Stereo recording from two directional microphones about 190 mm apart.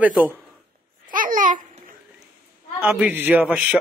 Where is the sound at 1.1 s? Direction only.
45° right (ahead or behind).